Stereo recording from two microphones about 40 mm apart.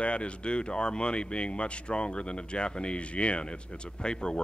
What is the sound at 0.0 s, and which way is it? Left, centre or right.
Speech, left.